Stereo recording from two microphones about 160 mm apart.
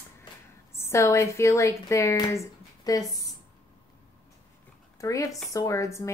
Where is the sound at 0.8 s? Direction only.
15° left (ahead or behind).